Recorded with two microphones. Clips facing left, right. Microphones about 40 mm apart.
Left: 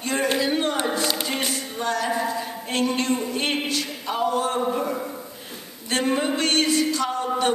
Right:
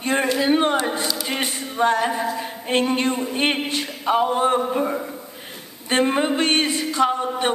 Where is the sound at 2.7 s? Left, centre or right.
Right.